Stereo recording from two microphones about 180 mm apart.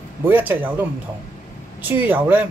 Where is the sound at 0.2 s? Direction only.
10° right (ahead or behind).